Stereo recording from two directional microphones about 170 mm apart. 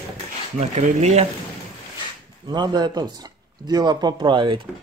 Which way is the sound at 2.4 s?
25° right (ahead or behind).